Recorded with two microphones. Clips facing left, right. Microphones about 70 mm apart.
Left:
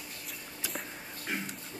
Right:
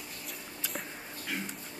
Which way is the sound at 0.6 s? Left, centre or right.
Centre.